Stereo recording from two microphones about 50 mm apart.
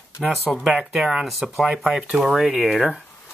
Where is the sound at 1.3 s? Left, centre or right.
Centre.